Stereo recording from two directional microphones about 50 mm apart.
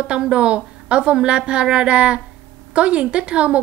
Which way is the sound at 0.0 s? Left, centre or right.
Right.